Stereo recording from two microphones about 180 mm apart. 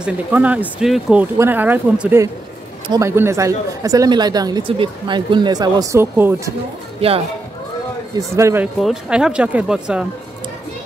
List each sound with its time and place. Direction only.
0.0 s a woman's voice: 10° right (ahead or behind)
8.4 s speech: 15° right (ahead or behind)
8.7 s speech: 5° right (ahead or behind)